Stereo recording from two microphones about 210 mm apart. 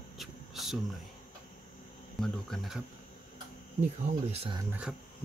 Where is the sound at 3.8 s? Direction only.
30° right (ahead or behind).